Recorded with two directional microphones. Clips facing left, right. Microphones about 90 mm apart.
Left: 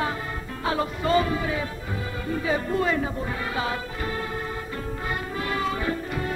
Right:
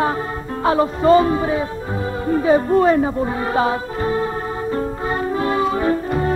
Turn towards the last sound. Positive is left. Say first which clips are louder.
# right 9 dB
turn(degrees=-35)  # may be behind; listen again after turning